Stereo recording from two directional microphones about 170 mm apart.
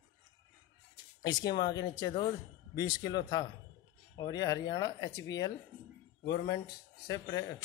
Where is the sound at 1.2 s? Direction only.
25° left (ahead or behind).